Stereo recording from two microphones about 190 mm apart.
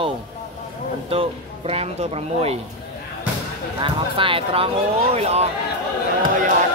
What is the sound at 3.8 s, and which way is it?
A man's voice, 25° right (ahead or behind).